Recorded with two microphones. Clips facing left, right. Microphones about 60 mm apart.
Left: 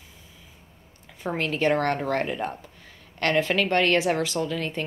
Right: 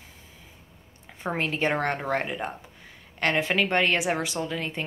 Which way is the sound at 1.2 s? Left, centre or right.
Right.